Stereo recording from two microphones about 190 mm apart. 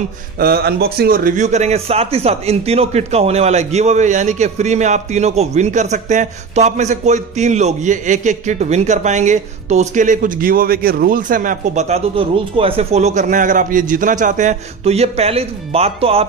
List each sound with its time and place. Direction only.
0.4 s speech: 55° right (ahead or behind); by 16.3 s 30° right (ahead or behind)